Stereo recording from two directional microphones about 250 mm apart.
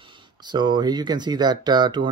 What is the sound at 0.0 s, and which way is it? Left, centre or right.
Speech, centre.